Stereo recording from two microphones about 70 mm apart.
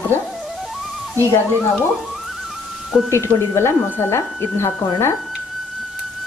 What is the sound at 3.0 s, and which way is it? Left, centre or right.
Speech, left.